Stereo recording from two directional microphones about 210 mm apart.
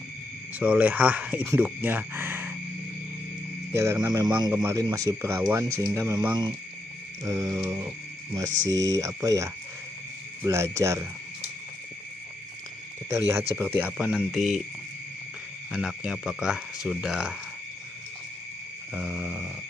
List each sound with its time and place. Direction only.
0.6 s speech: 5° right (ahead or behind)
3.7 s speech: 15° right (ahead or behind)
13.3 s speech: 10° right (ahead or behind)
15.7 s speech: 5° right (ahead or behind)
18.9 s speech: 5° right (ahead or behind)